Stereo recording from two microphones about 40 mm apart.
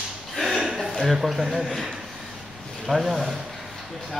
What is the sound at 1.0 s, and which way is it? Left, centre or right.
Speech, centre.